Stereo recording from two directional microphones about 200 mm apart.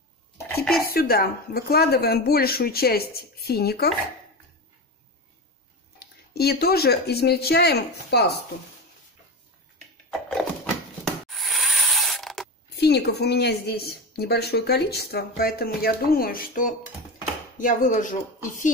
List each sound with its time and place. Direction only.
0.8 s a woman's voice: 50° left (ahead or behind)
5.9 s speech: 50° left (ahead or behind)
11.1 s mechanisms: centre (ahead or behind)
12.7 s a woman's voice: 55° left (ahead or behind); by 18.7 s 40° left (ahead or behind)